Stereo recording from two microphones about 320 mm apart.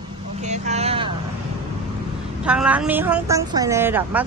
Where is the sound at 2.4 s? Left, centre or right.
Centre.